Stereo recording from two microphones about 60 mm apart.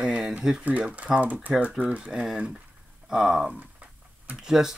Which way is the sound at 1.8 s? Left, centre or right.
Right.